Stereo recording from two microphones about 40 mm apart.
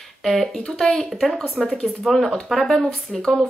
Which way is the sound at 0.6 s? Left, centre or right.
Centre.